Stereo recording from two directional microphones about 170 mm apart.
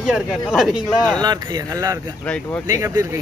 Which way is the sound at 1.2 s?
25° right (ahead or behind).